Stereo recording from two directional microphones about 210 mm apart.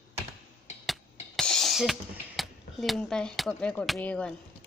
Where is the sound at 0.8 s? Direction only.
Centre (ahead or behind).